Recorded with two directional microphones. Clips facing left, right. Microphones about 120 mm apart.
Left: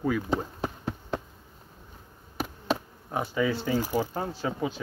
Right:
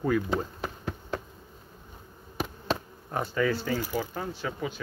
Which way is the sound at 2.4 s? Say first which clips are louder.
Left 1 dB; 10° left (ahead or behind).